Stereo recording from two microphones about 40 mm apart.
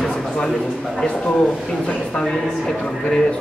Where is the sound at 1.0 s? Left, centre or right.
Left.